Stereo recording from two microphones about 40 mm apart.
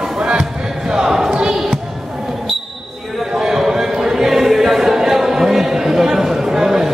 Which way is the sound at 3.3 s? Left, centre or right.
Centre.